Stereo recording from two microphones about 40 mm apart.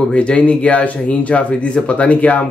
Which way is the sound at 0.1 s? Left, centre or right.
Left.